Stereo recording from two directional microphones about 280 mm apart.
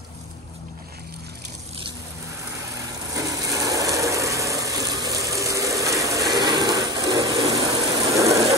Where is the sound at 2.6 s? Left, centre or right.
Centre.